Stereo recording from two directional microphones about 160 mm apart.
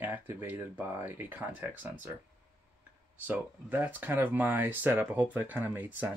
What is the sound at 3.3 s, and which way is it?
Speech, 10° right (ahead or behind).